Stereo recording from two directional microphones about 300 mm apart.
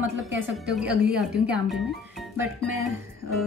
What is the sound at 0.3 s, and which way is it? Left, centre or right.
Speech, right.